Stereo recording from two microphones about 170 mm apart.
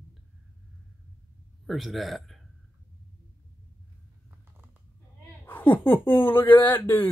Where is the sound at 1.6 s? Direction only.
Centre (ahead or behind).